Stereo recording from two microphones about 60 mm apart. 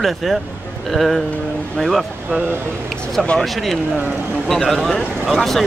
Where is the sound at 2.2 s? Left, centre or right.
Right.